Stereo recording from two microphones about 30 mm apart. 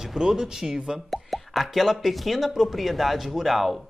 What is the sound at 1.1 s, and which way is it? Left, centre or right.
Speech, centre.